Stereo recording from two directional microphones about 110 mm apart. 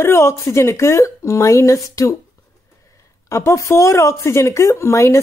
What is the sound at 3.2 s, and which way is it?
A woman's voice, 25° left (ahead or behind).